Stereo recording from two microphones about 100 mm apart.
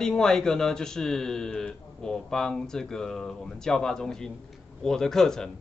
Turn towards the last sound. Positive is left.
turn(degrees=5)  # may be behind; listen again after turning